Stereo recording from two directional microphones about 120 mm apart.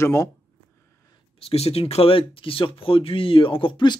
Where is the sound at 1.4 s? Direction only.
55° left (ahead or behind).